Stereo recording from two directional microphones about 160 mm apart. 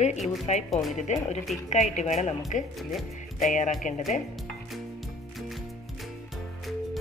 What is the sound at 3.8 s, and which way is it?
Speech, 50° left (ahead or behind).